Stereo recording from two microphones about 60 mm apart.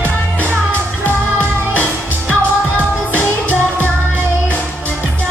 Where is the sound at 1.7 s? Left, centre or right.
Left.